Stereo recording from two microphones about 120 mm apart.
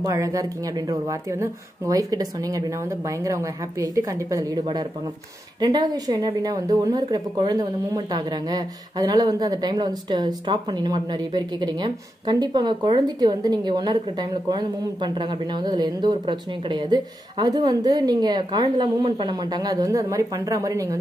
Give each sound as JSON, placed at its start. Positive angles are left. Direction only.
{"t": 0.0, "sound": "a woman's voice", "side_deg": -30}